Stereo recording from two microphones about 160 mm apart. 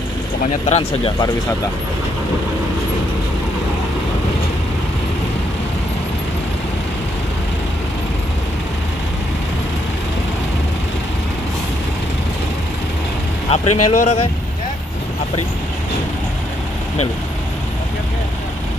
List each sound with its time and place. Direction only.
0.7 s speech: 40° left (ahead or behind)
13.5 s speech: 40° left (ahead or behind)